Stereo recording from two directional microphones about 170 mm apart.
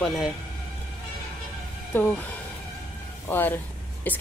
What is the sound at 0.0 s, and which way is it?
Speech, centre (ahead or behind).